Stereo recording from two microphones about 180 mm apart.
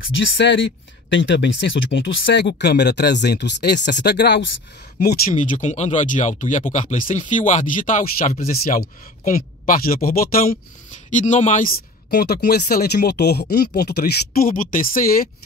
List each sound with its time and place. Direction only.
0.1 s speech: 85° left
5.0 s speech: 55° left (ahead or behind)
11.1 s speech: 40° left (ahead or behind)